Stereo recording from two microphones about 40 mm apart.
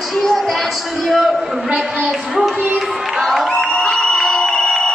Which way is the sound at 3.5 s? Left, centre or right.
Left.